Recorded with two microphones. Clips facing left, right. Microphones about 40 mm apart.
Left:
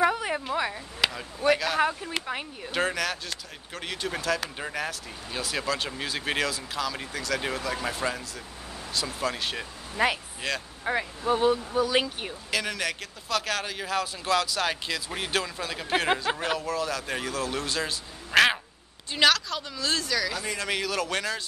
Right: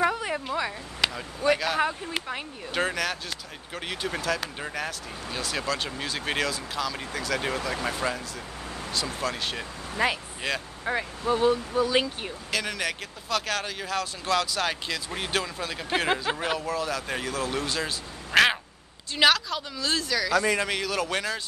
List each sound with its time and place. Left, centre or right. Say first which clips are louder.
0.0 s a sound: left 1 dB; centre
1.5 s speech: left 1 dB; centre
11.2 s speech: right 1 dB; left
11.9 s speech: right 1 dB; centre